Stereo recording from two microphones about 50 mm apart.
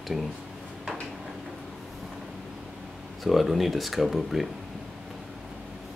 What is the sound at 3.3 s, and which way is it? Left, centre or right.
Speech, centre.